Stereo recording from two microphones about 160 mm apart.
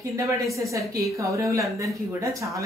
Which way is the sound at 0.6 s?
20° right (ahead or behind).